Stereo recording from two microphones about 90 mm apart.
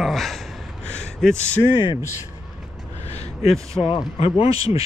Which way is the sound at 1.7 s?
55° left (ahead or behind).